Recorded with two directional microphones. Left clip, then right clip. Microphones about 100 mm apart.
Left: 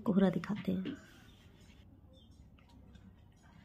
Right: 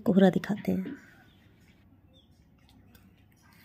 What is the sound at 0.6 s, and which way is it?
Speech, 40° right (ahead or behind).